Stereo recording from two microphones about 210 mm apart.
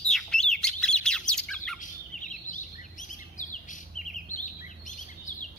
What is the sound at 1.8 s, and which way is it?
Bird, 35° left (ahead or behind).